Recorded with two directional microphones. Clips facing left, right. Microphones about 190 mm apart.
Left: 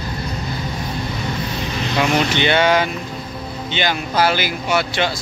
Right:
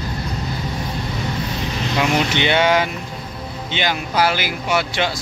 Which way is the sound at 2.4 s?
15° right (ahead or behind).